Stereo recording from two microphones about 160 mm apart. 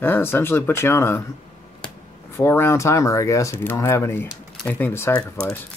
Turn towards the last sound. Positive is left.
turn(degrees=15)  # may be behind; listen again after turning